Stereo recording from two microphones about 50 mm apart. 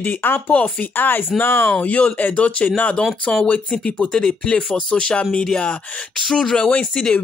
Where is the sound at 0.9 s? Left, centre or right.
Left.